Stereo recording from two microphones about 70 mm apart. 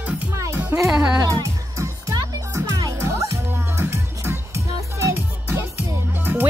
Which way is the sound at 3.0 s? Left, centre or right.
Right.